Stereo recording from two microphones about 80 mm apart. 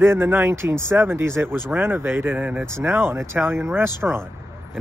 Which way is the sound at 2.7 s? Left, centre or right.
Right.